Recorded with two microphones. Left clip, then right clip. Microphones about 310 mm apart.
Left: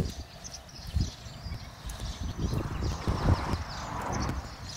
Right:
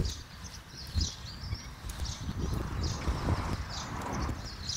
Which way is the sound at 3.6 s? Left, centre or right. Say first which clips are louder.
Left 2 dB; centre.